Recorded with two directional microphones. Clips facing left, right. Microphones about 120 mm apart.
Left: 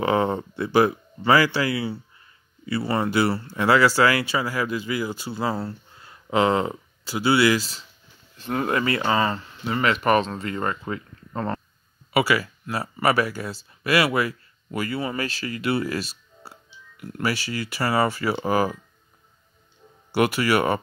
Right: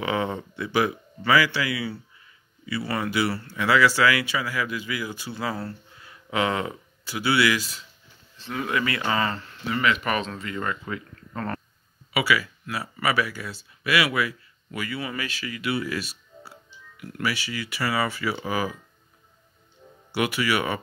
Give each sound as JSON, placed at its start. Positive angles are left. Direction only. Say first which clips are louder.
{"t": 0.0, "sound": "speech", "louder": "left 5 dB", "side_deg": 40}
{"t": 8.4, "sound": "speech", "louder": "left 3 dB", "side_deg": 45}
{"t": 9.7, "sound": "speech", "louder": "left 4 dB", "side_deg": 40}
{"t": 12.1, "sound": "speech", "louder": "left 3 dB", "side_deg": 40}
{"t": 20.1, "sound": "speech", "louder": "left 4 dB", "side_deg": 45}